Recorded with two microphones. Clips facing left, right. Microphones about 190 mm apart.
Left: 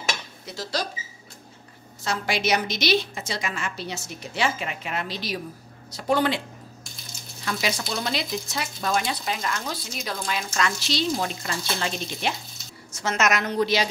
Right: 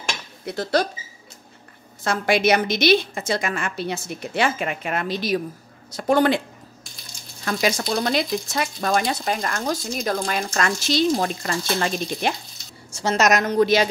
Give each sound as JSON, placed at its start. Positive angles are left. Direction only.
{"t": 0.5, "sound": "a woman's voice", "side_deg": -55}
{"t": 2.0, "sound": "a woman's voice", "side_deg": -55}
{"t": 7.6, "sound": "speech", "side_deg": -45}
{"t": 12.9, "sound": "speech", "side_deg": -30}